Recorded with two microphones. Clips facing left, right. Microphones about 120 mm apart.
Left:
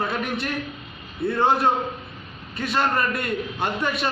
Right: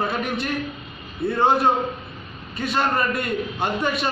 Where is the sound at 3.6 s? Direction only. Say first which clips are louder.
Right 1 dB; 15° right (ahead or behind).